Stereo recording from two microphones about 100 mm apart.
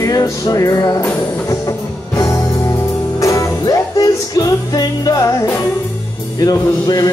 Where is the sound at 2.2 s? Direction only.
35° left (ahead or behind).